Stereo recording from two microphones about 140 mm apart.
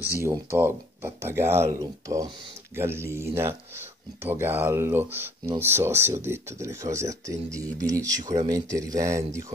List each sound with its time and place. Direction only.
0.2 s speech: 20° right (ahead or behind)